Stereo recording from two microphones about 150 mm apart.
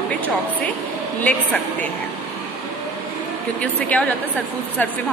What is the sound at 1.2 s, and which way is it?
Speech, 10° left (ahead or behind).